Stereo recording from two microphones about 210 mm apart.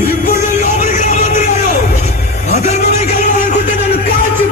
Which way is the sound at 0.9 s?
30° left (ahead or behind).